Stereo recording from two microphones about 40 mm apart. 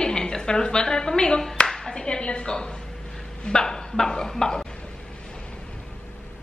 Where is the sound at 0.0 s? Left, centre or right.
Centre.